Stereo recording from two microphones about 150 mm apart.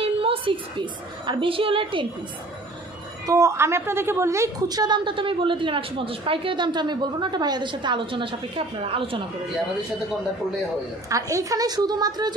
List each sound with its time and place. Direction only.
0.0 s a woman's voice: 40° right (ahead or behind)
3.3 s a woman's voice: 20° right (ahead or behind); by 9.2 s 35° right (ahead or behind)
11.1 s a woman's voice: 20° right (ahead or behind)